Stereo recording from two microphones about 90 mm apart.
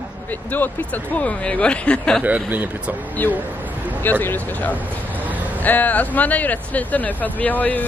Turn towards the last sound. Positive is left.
turn(degrees=20)  # may be behind; listen again after turning